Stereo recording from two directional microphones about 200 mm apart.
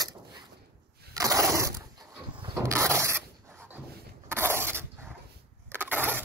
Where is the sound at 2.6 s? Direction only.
15° right (ahead or behind).